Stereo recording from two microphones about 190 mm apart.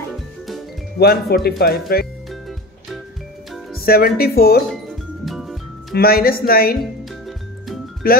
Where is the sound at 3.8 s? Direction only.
50° left (ahead or behind).